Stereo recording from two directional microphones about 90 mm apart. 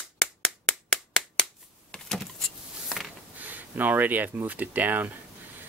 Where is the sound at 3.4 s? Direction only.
20° right (ahead or behind).